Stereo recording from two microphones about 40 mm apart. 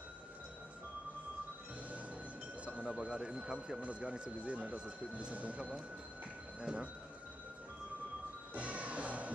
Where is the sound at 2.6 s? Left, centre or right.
Right.